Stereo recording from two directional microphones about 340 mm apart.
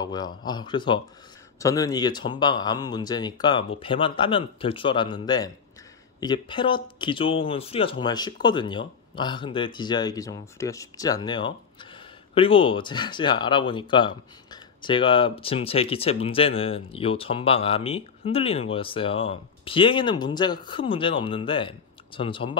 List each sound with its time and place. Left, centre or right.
0.0 s speech: centre